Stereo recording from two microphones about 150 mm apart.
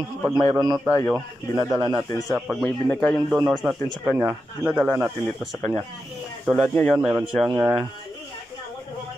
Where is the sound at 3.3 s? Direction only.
25° right (ahead or behind).